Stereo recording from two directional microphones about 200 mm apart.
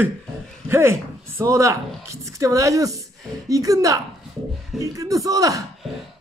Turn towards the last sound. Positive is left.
turn(degrees=-15)  # may be behind; listen again after turning